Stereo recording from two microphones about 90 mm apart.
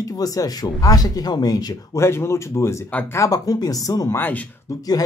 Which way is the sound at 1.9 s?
30° left (ahead or behind).